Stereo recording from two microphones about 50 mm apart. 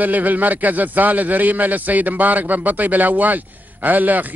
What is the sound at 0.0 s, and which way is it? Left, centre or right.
A man's voice, right.